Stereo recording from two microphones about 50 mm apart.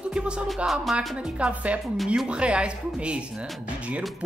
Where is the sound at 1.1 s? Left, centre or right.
Right.